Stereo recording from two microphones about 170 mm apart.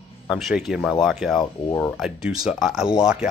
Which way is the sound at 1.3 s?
25° left (ahead or behind).